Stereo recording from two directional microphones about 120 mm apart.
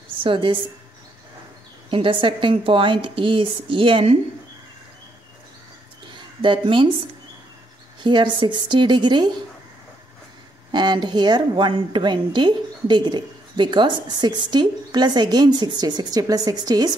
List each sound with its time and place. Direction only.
0.2 s a woman's voice: 45° right (ahead or behind)
1.9 s a woman's voice: 45° right (ahead or behind)
6.4 s a woman's voice: 45° right (ahead or behind)
8.0 s a woman's voice: 40° right (ahead or behind)
10.7 s a woman's voice: 40° right (ahead or behind)